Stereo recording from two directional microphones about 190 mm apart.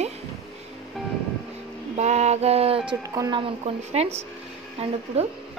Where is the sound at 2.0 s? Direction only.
35° right (ahead or behind).